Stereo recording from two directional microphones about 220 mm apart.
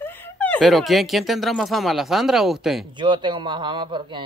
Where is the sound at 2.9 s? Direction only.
20° right (ahead or behind).